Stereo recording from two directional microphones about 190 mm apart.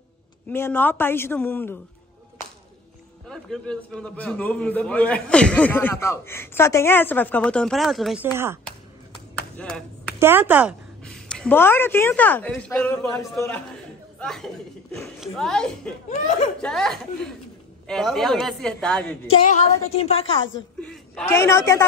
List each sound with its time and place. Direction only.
0.5 s a man's voice: 10° left (ahead or behind)
3.3 s a man's voice: 5° left (ahead or behind)
9.6 s a woman's voice: 5° left (ahead or behind)
10.1 s speech: 10° right (ahead or behind)
11.1 s a man's voice: 5° left (ahead or behind)
14.2 s a woman's voice: centre (ahead or behind)
16.1 s a woman's voice: 35° left (ahead or behind)
16.6 s a woman's voice: centre (ahead or behind)
19.2 s a woman's voice: 35° left (ahead or behind)
20.2 s a woman's voice: 85° left
20.8 s a sound: 5° left (ahead or behind)
21.3 s a man's voice: 15° left (ahead or behind)